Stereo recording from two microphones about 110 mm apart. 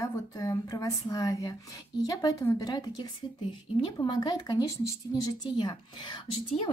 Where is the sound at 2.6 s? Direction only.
40° left (ahead or behind).